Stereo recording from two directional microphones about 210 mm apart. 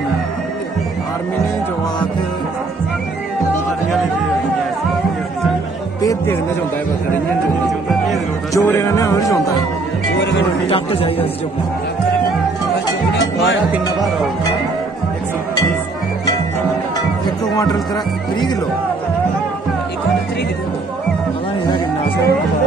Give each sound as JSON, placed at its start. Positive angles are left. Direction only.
{"t": 8.5, "sound": "music", "side_deg": 10}
{"t": 10.1, "sound": "speech", "side_deg": 60}
{"t": 10.7, "sound": "speech", "side_deg": 25}